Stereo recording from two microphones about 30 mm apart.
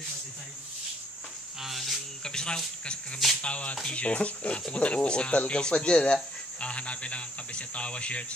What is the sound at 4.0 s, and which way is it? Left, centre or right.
Speech, left.